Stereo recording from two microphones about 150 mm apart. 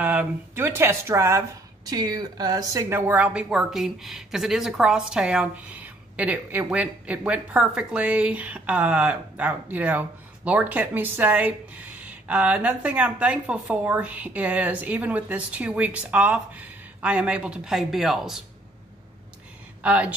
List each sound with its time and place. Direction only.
0.0 s a woman's voice: 10° right (ahead or behind)
19.8 s speech: 10° right (ahead or behind)